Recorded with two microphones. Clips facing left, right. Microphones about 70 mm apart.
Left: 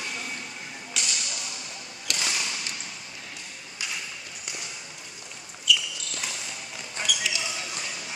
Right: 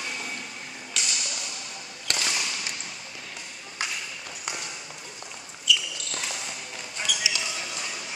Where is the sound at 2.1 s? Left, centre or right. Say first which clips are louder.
Right 2 dB; right.